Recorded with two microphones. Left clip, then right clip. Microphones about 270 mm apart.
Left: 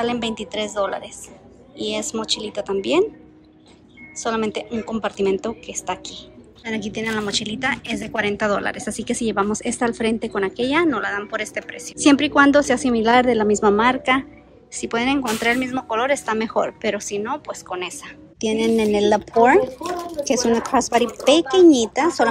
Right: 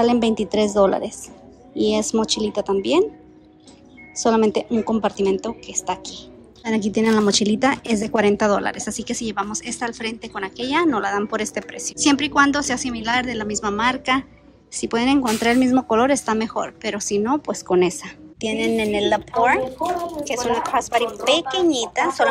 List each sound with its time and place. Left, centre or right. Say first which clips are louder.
0.0 s a woman's voice: right 5 dB; centre
4.2 s a woman's voice: right 5 dB; centre
18.4 s a woman's voice: left 2 dB; centre